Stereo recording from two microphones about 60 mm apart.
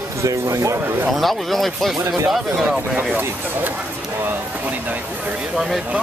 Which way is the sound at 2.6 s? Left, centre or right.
Centre.